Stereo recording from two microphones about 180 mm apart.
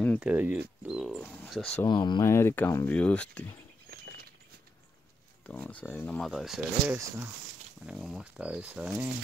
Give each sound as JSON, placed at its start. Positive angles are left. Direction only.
{"t": 0.2, "sound": "speech", "side_deg": -10}
{"t": 1.9, "sound": "speech", "side_deg": 25}
{"t": 3.9, "sound": "patter", "side_deg": -60}
{"t": 5.7, "sound": "speech", "side_deg": 10}
{"t": 6.9, "sound": "speech", "side_deg": -15}
{"t": 7.8, "sound": "speech", "side_deg": -5}